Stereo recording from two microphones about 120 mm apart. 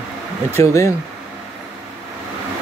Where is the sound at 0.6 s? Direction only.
25° left (ahead or behind).